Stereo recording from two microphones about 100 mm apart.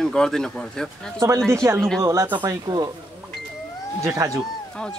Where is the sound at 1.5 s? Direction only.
30° right (ahead or behind).